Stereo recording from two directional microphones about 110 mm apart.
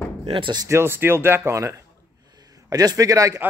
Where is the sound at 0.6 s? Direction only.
25° right (ahead or behind).